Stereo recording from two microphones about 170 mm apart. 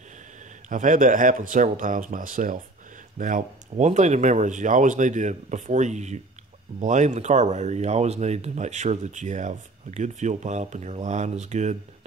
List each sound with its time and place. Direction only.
0.7 s speech: 50° right (ahead or behind)